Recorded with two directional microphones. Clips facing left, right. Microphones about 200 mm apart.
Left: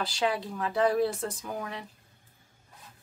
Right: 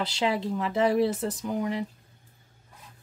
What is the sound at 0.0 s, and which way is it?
Speech, 25° right (ahead or behind).